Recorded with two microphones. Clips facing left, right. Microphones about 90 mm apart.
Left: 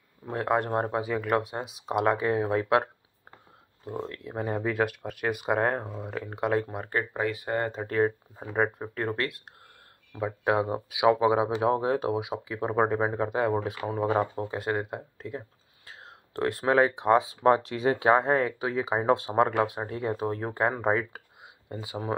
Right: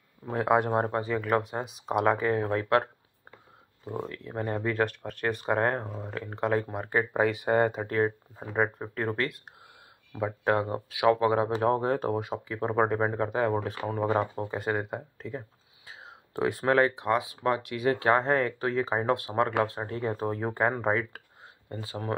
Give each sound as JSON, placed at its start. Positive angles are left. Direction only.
{"t": 0.2, "sound": "speech", "side_deg": 0}
{"t": 4.1, "sound": "speech", "side_deg": 5}
{"t": 7.2, "sound": "speech", "side_deg": -20}
{"t": 7.8, "sound": "speech", "side_deg": 0}
{"t": 10.5, "sound": "speech", "side_deg": 15}
{"t": 16.7, "sound": "speech", "side_deg": 20}
{"t": 17.9, "sound": "speech", "side_deg": 15}
{"t": 19.1, "sound": "speech", "side_deg": 25}
{"t": 19.6, "sound": "speech", "side_deg": 10}